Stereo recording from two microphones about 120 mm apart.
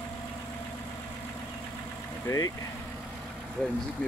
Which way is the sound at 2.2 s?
30° left (ahead or behind).